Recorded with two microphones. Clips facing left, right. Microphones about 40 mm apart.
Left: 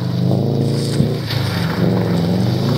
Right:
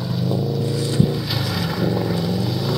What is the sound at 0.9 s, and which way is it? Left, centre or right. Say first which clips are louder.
Vehicle: left 1 dB; centre.